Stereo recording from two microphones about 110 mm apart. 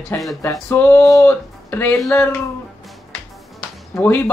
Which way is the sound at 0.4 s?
20° left (ahead or behind).